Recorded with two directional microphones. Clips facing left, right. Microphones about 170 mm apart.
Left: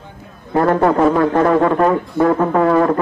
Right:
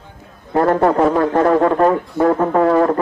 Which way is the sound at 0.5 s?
30° right (ahead or behind).